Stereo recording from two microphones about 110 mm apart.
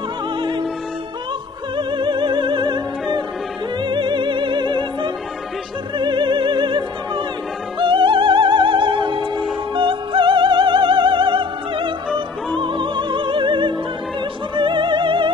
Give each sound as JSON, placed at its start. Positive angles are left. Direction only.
{"t": 0.4, "sound": "music", "side_deg": -45}
{"t": 1.8, "sound": "music", "side_deg": -45}
{"t": 5.9, "sound": "opera", "side_deg": -45}
{"t": 7.8, "sound": "music", "side_deg": -50}
{"t": 12.5, "sound": "opera", "side_deg": -50}